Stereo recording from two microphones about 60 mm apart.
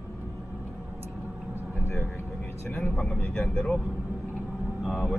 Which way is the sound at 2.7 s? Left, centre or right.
Centre.